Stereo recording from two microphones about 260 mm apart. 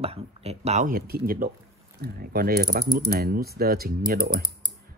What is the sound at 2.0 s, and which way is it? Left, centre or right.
Mechanisms, right.